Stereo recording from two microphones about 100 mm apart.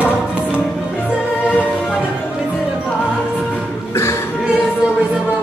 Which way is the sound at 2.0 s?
5° right (ahead or behind).